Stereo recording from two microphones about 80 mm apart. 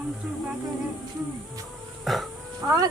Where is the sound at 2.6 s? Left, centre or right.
Right.